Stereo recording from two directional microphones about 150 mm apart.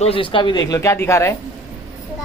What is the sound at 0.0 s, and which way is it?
Speech, 35° left (ahead or behind).